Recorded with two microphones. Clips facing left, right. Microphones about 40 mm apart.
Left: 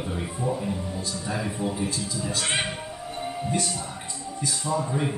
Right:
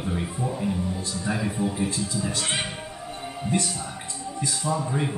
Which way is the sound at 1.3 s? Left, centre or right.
Centre.